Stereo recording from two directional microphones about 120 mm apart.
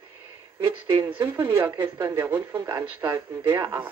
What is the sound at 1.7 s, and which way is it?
Speech, 40° right (ahead or behind).